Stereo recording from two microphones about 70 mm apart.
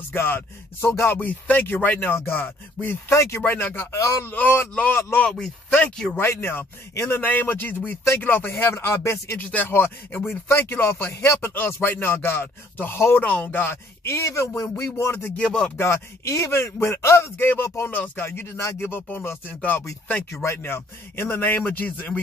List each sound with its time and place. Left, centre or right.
0.1 s speech: left
4.0 s speech: left
4.3 s speech: left
5.9 s speech: centre
6.1 s speech: left
9.4 s speech: left
13.2 s speech: centre
13.5 s speech: left
15.1 s speech: left
15.4 s speech: centre
15.8 s speech: left